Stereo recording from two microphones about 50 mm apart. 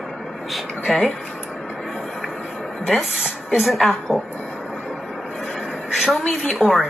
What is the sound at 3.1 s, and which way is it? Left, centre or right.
Speech, centre.